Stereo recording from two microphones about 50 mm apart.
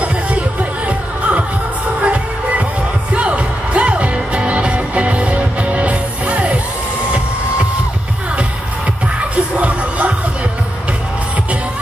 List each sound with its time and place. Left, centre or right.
0.0 s music: right
9.3 s music: right